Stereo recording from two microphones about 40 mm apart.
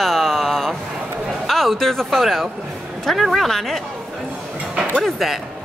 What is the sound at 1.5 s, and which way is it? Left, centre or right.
A woman's voice, centre.